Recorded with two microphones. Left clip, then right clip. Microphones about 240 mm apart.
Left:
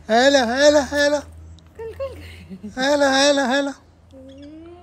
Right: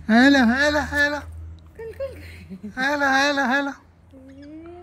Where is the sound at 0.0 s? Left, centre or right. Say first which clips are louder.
Left 2 dB; centre.